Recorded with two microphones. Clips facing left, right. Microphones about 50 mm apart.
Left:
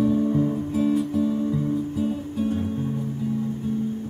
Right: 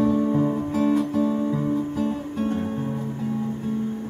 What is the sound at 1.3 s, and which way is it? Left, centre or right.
Music, right.